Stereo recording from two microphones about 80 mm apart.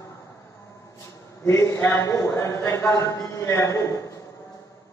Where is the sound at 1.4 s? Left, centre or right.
Left.